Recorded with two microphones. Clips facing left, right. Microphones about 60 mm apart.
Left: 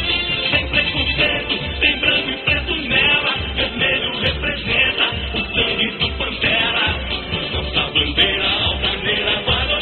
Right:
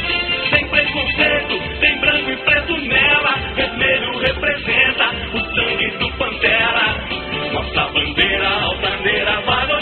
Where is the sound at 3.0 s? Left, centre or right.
Right.